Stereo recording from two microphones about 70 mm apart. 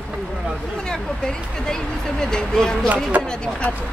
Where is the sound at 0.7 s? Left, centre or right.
Centre.